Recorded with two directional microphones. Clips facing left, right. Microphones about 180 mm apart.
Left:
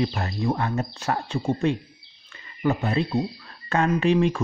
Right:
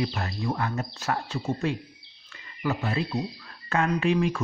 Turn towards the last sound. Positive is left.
turn(degrees=25)  # may be behind; listen again after turning